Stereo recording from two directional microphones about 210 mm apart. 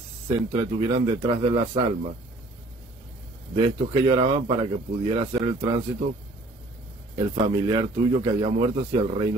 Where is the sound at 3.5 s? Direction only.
25° right (ahead or behind).